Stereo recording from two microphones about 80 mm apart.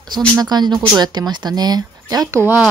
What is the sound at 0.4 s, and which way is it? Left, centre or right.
Speech, right.